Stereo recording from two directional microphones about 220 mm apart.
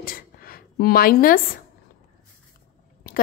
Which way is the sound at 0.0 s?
40° left (ahead or behind).